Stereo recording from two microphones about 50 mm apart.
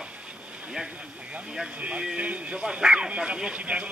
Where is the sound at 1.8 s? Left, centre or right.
Right.